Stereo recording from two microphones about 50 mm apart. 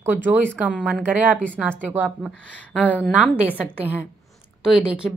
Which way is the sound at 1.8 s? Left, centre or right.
Right.